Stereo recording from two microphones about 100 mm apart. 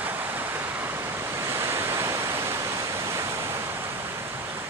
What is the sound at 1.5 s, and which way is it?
Waves, 25° right (ahead or behind).